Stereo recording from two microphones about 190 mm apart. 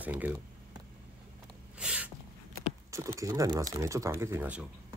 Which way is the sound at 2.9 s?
15° right (ahead or behind).